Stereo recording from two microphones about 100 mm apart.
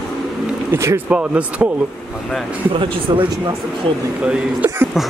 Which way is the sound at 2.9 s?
55° right (ahead or behind).